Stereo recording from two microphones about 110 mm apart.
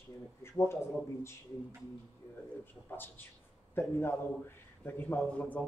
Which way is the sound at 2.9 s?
20° left (ahead or behind).